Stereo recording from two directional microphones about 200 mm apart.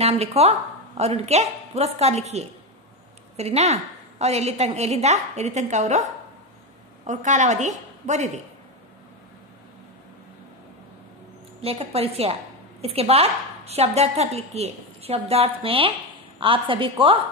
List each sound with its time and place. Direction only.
0.0 s a woman's voice: 30° right (ahead or behind)
7.1 s a woman's voice: 35° right (ahead or behind)
11.6 s a woman's voice: 30° right (ahead or behind)